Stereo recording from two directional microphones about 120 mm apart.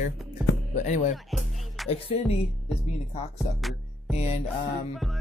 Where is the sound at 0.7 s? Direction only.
90° left.